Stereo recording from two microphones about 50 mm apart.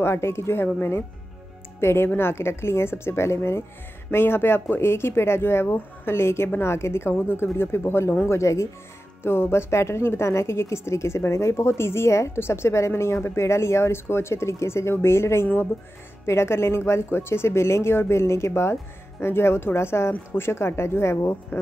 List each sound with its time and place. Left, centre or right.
0.0 s a woman's voice: left
1.8 s a woman's voice: left
4.1 s a woman's voice: left
8.3 s speech: left
9.2 s a woman's voice: left
12.4 s a woman's voice: left
15.4 s speech: left
16.3 s a woman's voice: left